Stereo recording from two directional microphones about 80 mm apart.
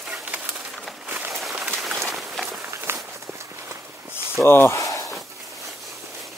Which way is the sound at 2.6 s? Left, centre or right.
Right.